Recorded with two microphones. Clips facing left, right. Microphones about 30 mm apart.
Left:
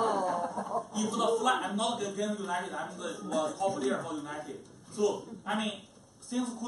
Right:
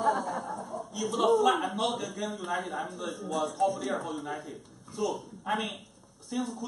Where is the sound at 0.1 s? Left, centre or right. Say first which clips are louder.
Left 1 dB; centre.